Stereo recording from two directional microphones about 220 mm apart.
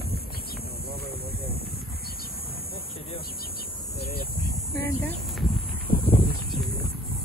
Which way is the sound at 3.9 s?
45° left (ahead or behind).